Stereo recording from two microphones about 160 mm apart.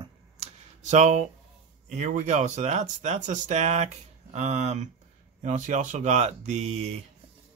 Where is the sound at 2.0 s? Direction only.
45° right (ahead or behind).